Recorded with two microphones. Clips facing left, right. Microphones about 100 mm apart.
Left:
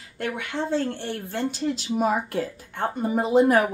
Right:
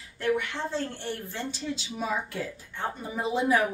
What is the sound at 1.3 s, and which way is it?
A woman's voice, 60° left (ahead or behind).